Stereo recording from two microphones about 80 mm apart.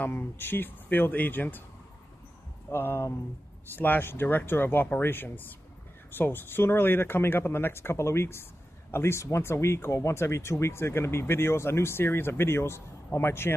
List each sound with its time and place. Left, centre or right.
0.0 s speech: left
2.7 s speech: left